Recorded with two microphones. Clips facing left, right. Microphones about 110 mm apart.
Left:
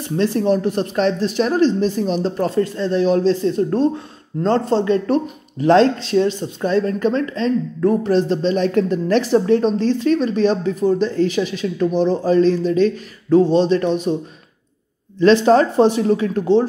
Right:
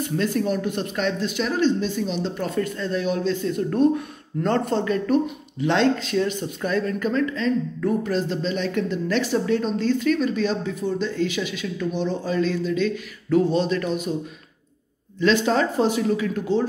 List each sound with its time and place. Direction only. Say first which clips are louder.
0.0 s a woman's voice: left 5 dB; 30° left (ahead or behind)
15.1 s a woman's voice: left 8 dB; 35° left (ahead or behind)